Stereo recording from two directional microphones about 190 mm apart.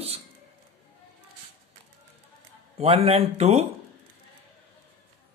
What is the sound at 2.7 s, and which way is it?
Speech, 30° right (ahead or behind).